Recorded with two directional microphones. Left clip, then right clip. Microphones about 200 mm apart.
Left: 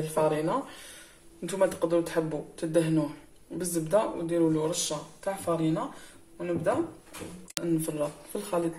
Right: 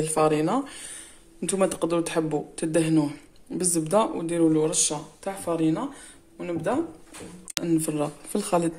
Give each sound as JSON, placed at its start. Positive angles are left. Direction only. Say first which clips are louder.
{"t": 0.2, "sound": "speech", "louder": "right 4 dB", "side_deg": -50}